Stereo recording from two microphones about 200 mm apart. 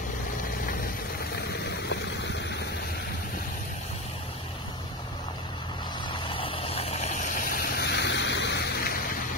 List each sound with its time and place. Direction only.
6.2 s vehicle: 25° left (ahead or behind); by 8.9 s 55° left (ahead or behind)